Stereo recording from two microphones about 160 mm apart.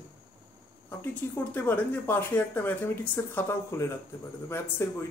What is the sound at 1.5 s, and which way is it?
Speech, 10° left (ahead or behind).